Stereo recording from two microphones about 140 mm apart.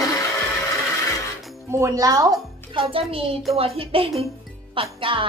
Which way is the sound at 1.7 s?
25° right (ahead or behind).